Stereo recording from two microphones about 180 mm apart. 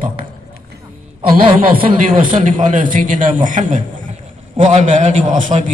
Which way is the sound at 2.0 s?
45° right (ahead or behind).